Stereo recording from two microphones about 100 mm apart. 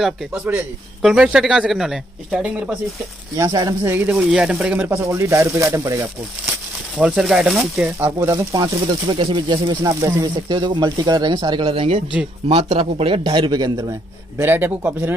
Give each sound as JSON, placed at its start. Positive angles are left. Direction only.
{"t": 1.0, "sound": "speech", "side_deg": -5}
{"t": 3.3, "sound": "speech", "side_deg": -40}
{"t": 3.8, "sound": "speech", "side_deg": -20}
{"t": 4.9, "sound": "speech", "side_deg": -30}
{"t": 7.0, "sound": "speech", "side_deg": -5}
{"t": 7.8, "sound": "speech", "side_deg": -20}
{"t": 8.3, "sound": "speech", "side_deg": -35}
{"t": 9.1, "sound": "speech", "side_deg": -55}
{"t": 11.6, "sound": "speech", "side_deg": -65}
{"t": 14.4, "sound": "speech", "side_deg": -25}